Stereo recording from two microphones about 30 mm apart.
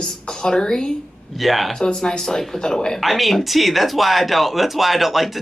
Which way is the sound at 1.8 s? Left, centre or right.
Left.